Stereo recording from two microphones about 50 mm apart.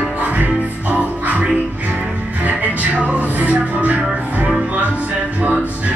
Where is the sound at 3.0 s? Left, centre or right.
Right.